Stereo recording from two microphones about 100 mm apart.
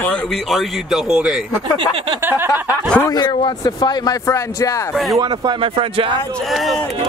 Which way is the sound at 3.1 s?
45° left (ahead or behind).